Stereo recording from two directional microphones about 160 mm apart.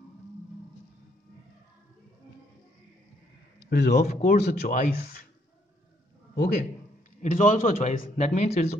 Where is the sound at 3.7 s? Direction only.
90° left.